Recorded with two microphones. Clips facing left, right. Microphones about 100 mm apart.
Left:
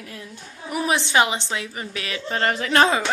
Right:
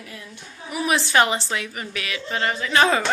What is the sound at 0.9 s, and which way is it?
Speech, 20° left (ahead or behind).